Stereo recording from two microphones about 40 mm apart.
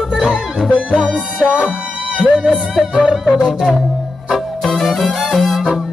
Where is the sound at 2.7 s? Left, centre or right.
Right.